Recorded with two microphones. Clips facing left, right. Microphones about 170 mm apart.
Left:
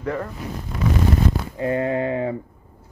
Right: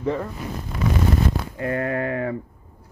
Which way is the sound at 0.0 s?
5° right (ahead or behind).